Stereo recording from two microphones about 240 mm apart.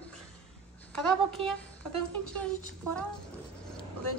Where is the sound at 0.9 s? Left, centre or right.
Centre.